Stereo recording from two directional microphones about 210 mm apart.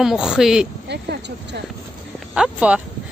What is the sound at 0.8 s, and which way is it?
Speech, 55° right (ahead or behind).